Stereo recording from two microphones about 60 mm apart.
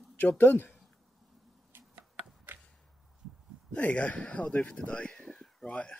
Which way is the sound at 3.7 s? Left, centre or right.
Left.